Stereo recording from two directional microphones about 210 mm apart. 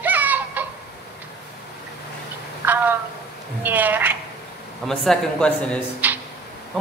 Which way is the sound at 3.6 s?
10° right (ahead or behind).